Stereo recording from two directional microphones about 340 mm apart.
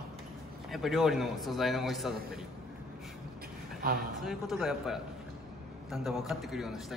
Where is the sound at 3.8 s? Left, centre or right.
Right.